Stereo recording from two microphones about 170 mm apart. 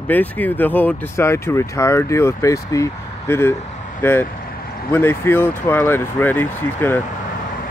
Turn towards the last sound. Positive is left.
turn(degrees=10)  # may be behind; listen again after turning